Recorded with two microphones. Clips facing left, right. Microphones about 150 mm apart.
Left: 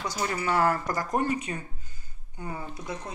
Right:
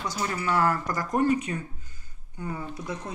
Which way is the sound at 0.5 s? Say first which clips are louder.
Even; 15° left (ahead or behind).